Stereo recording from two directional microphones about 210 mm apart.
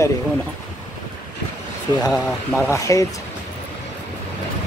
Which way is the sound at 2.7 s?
15° left (ahead or behind).